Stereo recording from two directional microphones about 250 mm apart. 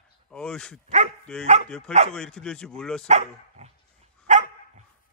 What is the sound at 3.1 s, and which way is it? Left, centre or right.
Speech, right.